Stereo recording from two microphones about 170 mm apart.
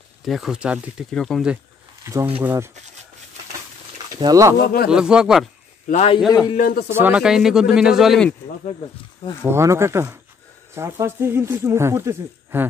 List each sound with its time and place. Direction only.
0.2 s speech: centre (ahead or behind)
2.4 s speech: 15° right (ahead or behind)
4.1 s speech: 20° right (ahead or behind)
4.6 s speech: 60° left (ahead or behind)
4.8 s speech: 5° right (ahead or behind)
5.9 s a man's voice: 40° left (ahead or behind)
6.5 s speech: 55° left (ahead or behind)
6.9 s speech: 10° right (ahead or behind)
9.2 s speech: 20° left (ahead or behind)
9.5 s speech: 15° right (ahead or behind)